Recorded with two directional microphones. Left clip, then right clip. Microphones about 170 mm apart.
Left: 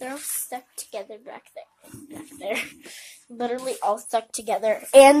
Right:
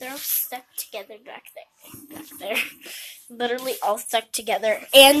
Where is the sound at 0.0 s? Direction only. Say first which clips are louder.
Right 1 dB; 20° left (ahead or behind).